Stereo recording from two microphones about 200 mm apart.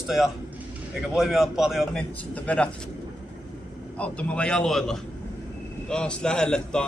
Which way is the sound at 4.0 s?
5° left (ahead or behind).